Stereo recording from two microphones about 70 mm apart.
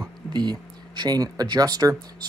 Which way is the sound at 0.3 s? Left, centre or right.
Right.